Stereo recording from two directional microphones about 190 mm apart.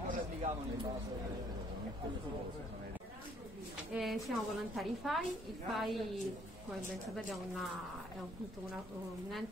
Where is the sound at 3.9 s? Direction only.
Centre (ahead or behind).